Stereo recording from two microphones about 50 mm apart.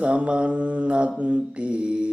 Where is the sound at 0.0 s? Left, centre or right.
Right.